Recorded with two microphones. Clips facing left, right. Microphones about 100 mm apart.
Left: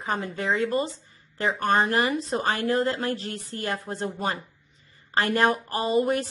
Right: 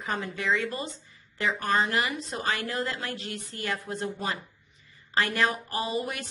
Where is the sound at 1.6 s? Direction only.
45° left (ahead or behind).